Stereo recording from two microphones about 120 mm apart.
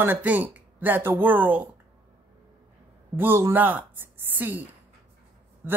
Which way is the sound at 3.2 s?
20° right (ahead or behind).